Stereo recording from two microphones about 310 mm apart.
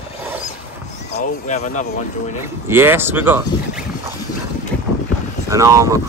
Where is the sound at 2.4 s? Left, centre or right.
Centre.